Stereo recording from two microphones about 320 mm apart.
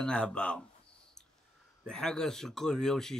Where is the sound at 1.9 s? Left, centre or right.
Centre.